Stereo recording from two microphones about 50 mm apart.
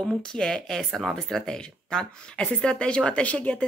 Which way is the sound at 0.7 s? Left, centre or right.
Centre.